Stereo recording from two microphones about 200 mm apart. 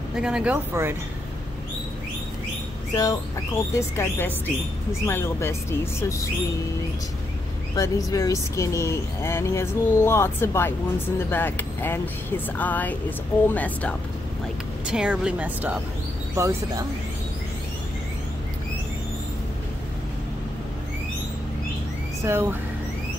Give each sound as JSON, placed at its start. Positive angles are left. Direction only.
{"t": 0.1, "sound": "speech", "side_deg": -5}
{"t": 2.9, "sound": "speech", "side_deg": 20}
{"t": 7.7, "sound": "speech", "side_deg": 15}
{"t": 14.9, "sound": "speech", "side_deg": -5}
{"t": 22.2, "sound": "speech", "side_deg": -10}